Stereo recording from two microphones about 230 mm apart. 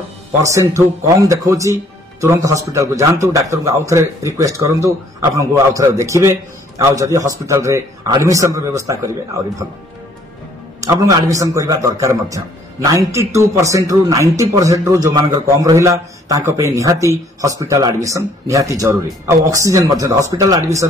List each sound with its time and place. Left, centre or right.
0.4 s a man's voice: centre
10.8 s a man's voice: centre